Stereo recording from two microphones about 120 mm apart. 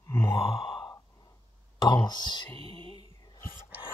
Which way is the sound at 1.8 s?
35° left (ahead or behind).